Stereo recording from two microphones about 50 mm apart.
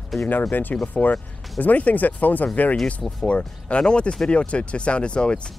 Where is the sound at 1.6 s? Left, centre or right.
Left.